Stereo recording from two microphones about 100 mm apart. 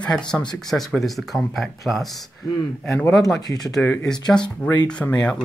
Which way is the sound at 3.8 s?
15° left (ahead or behind).